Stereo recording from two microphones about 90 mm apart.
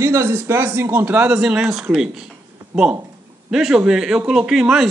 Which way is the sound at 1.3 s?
10° right (ahead or behind).